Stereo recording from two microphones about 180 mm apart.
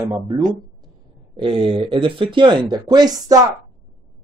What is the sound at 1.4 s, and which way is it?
Speech, 30° right (ahead or behind).